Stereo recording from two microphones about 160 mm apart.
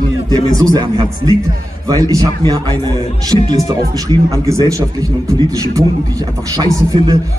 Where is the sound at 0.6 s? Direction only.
25° right (ahead or behind).